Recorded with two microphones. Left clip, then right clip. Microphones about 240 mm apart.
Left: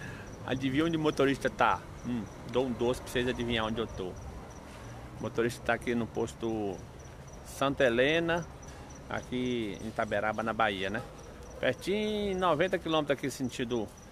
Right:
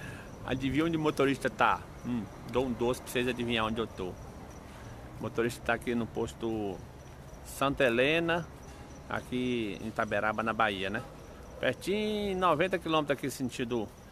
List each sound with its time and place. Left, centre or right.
0.0 s speech: centre
5.2 s speech: centre